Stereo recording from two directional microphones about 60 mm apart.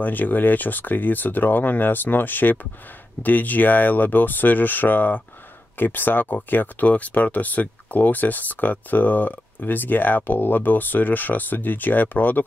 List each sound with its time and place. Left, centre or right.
0.0 s speech: left